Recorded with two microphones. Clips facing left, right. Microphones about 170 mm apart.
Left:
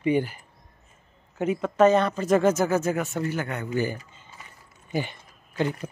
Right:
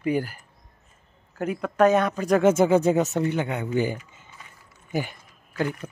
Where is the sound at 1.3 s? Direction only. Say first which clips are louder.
Left 1 dB; centre (ahead or behind).